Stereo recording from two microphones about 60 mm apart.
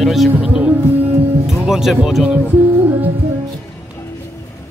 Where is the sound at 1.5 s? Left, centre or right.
Centre.